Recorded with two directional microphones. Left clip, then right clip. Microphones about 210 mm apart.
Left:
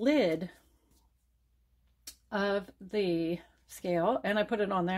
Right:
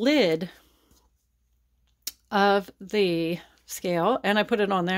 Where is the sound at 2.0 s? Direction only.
45° right (ahead or behind).